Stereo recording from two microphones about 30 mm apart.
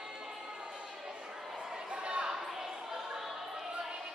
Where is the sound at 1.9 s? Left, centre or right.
Right.